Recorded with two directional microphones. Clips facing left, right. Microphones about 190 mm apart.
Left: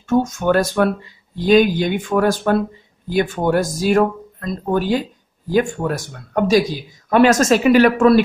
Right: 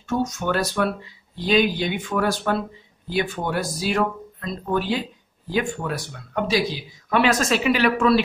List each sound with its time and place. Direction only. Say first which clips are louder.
0.0 s speech: left 7 dB; 50° left (ahead or behind)